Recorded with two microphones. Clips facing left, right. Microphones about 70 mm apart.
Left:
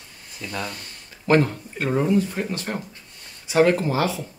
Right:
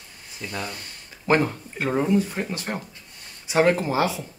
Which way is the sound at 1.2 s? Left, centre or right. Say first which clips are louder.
Left 2 dB; centre.